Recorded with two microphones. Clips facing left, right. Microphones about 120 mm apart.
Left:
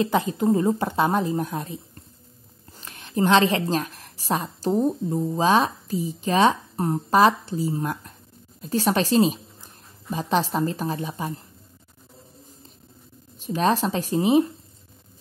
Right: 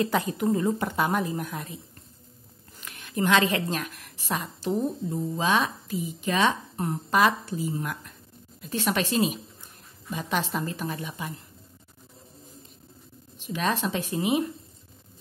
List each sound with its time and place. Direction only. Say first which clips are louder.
0.0 s a woman's voice: left 3 dB; 20° left (ahead or behind)
13.4 s a woman's voice: left 6 dB; 35° left (ahead or behind)